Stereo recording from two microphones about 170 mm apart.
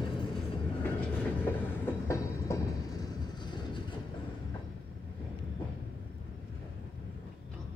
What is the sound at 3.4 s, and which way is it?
Train, 25° left (ahead or behind).